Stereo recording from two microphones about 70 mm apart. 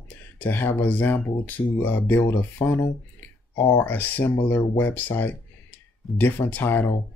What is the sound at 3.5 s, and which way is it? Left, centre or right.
Speech, left.